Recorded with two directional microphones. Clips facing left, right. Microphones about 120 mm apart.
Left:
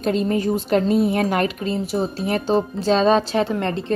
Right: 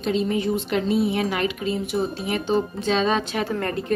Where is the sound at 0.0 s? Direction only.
50° left (ahead or behind).